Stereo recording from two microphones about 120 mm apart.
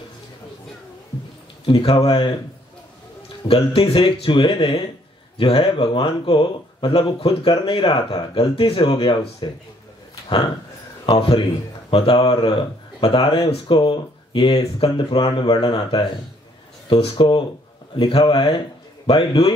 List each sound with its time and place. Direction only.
1.7 s speech: 50° left (ahead or behind)
3.4 s speech: 50° left (ahead or behind)
11.1 s speech: 45° left (ahead or behind)